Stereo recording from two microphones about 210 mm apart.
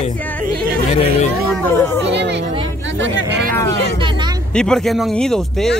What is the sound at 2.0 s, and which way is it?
Speech, 55° right (ahead or behind).